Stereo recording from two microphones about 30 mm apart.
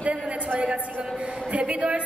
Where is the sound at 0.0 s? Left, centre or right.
Right.